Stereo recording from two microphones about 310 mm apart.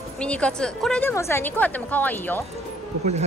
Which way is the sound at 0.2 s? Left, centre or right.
Centre.